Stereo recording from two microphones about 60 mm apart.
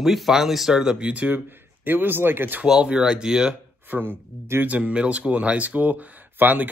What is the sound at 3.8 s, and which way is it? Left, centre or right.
Speech, right.